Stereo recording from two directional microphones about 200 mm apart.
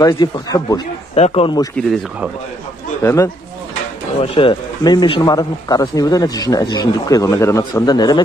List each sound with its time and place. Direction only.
0.0 s speech: 20° left (ahead or behind)
1.1 s speech: 30° left (ahead or behind)
1.8 s speech: centre (ahead or behind)
3.0 s speech: 15° left (ahead or behind)
4.2 s speech: 25° left (ahead or behind)